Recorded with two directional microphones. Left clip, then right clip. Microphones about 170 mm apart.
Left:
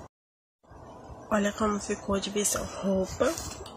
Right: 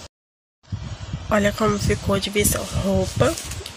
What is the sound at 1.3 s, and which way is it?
Speech, 25° right (ahead or behind).